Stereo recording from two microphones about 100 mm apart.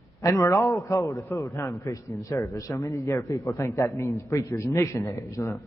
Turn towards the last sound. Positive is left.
turn(degrees=30)  # may be behind; listen again after turning